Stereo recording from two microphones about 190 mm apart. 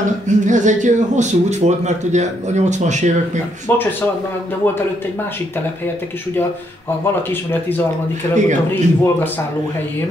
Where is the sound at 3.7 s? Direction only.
10° left (ahead or behind).